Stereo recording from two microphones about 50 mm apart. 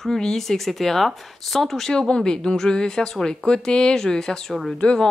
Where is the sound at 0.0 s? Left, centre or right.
Centre.